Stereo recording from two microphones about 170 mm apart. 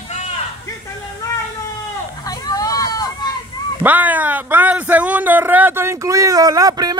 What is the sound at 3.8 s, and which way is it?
Speech, 10° right (ahead or behind).